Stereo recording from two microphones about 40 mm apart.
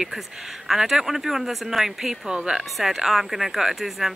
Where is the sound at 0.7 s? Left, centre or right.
Centre.